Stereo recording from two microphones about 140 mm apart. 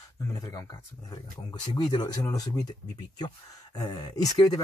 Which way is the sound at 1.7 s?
30° left (ahead or behind).